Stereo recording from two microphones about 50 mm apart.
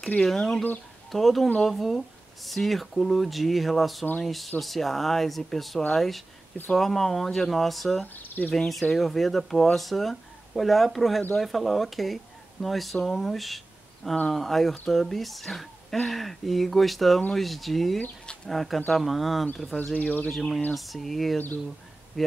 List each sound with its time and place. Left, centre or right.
0.2 s speech: centre
8.2 s speech: left
8.5 s speech: centre
19.9 s speech: left
20.3 s speech: centre